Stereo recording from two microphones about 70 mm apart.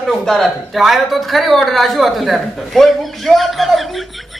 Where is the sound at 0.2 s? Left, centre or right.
Centre.